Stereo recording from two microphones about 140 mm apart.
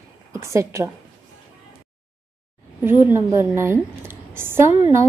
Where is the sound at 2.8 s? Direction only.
15° right (ahead or behind).